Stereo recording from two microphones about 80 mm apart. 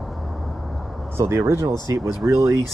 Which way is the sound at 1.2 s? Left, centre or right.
Right.